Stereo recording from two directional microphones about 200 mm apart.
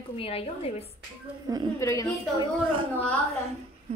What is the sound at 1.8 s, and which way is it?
Speech, 15° left (ahead or behind).